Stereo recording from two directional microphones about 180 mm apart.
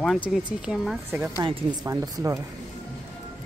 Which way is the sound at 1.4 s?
25° right (ahead or behind).